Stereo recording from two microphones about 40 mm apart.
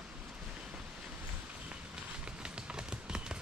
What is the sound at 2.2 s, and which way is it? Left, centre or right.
Run, right.